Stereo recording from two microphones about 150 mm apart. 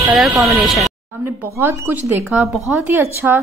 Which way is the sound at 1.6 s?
15° right (ahead or behind).